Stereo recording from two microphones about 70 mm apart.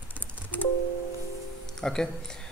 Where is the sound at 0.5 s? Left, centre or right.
Left.